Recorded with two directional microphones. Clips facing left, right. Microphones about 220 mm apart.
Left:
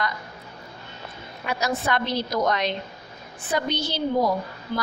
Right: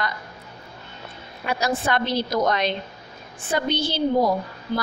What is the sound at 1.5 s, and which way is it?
A woman's voice, 35° right (ahead or behind).